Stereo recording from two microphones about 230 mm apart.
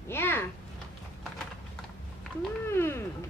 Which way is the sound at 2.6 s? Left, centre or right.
Centre.